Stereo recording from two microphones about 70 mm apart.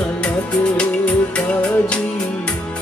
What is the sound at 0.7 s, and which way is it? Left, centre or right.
Music, centre.